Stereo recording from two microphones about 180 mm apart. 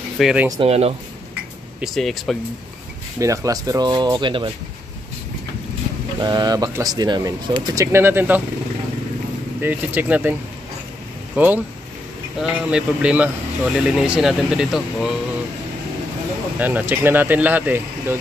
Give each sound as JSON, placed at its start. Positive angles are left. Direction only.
{"t": 0.2, "sound": "speech", "side_deg": -5}
{"t": 0.5, "sound": "speech", "side_deg": -30}
{"t": 1.8, "sound": "speech", "side_deg": 0}
{"t": 3.2, "sound": "speech", "side_deg": -20}
{"t": 6.2, "sound": "speech", "side_deg": -20}
{"t": 9.6, "sound": "speech", "side_deg": -10}
{"t": 11.3, "sound": "speech", "side_deg": -10}
{"t": 16.5, "sound": "speech", "side_deg": -10}